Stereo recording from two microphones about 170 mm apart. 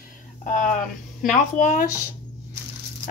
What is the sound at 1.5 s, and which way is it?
Speech, 50° left (ahead or behind).